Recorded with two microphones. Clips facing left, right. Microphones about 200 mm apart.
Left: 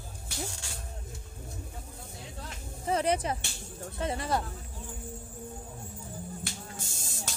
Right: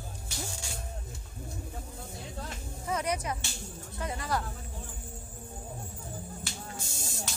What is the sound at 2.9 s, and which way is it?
Speech, 30° left (ahead or behind).